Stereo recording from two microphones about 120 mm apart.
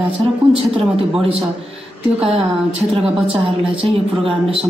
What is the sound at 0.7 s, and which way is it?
Speech, 50° right (ahead or behind).